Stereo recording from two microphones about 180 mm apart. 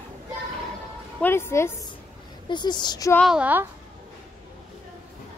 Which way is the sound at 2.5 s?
25° left (ahead or behind).